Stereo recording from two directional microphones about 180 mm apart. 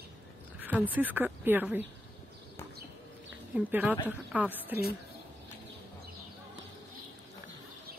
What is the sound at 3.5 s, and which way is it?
Speech, 10° right (ahead or behind).